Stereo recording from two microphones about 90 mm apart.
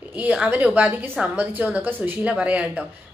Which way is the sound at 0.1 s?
10° right (ahead or behind).